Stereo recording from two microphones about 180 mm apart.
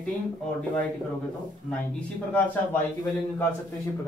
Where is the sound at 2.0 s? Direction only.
10° left (ahead or behind).